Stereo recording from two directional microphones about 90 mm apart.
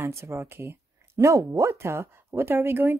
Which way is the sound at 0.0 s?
30° right (ahead or behind).